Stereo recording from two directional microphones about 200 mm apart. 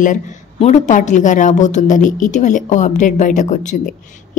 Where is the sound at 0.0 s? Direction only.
40° left (ahead or behind).